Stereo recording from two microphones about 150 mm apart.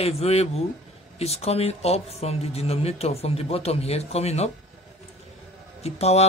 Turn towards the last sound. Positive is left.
turn(degrees=45)  # may be behind; listen again after turning